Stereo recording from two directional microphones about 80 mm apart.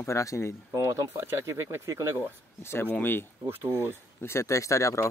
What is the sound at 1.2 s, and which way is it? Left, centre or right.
Speech, right.